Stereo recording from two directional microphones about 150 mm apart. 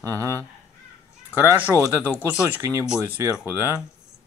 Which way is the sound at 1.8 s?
15° left (ahead or behind).